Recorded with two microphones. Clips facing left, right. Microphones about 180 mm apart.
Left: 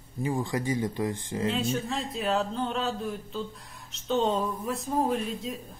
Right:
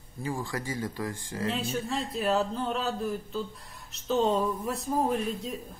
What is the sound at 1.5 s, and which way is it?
Speech, centre (ahead or behind).